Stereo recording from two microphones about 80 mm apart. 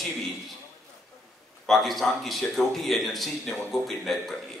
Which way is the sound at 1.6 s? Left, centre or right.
Centre.